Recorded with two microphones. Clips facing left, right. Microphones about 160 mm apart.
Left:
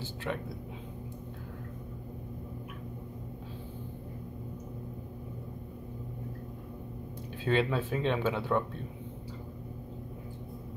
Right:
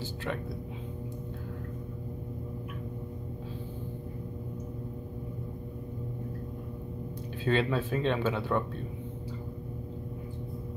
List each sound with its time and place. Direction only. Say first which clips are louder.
7.4 s speech: right 1 dB; 10° left (ahead or behind)